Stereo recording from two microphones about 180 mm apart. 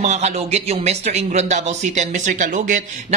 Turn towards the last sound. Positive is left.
turn(degrees=-45)  # may be behind; listen again after turning